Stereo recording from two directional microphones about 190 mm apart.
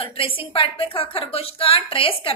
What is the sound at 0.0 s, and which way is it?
A woman's voice, 30° left (ahead or behind).